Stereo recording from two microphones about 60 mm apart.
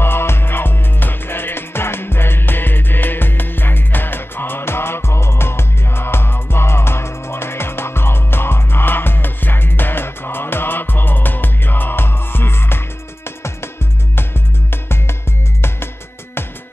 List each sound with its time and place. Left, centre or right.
0.0 s music: left
14.1 s music: left